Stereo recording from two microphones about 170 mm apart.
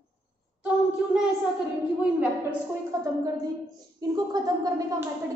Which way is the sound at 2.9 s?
20° right (ahead or behind).